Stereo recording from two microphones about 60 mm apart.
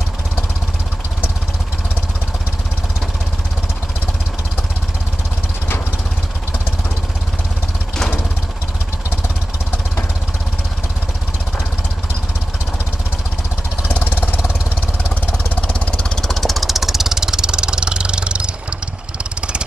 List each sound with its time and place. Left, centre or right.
13.8 s vehicle: left
15.3 s vehicle: left
16.2 s vehicle: centre